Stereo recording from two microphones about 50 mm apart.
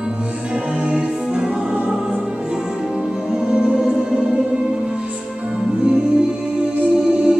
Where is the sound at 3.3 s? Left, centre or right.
Centre.